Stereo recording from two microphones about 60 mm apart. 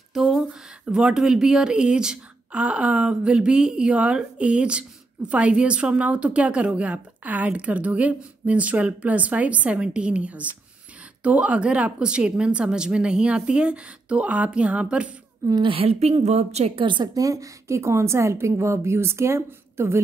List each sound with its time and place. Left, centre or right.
0.1 s a sound: centre
0.8 s a woman's voice: centre
15.4 s a woman's voice: right
17.1 s a woman's voice: right